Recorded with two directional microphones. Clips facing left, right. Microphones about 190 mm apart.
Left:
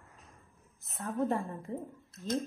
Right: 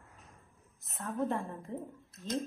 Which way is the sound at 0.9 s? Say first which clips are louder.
Left 2 dB; centre (ahead or behind).